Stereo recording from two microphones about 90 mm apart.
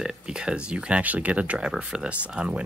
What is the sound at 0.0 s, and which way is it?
Speech, 10° right (ahead or behind).